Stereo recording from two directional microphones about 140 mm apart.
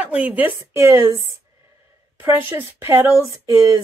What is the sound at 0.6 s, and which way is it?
Speech, 25° right (ahead or behind).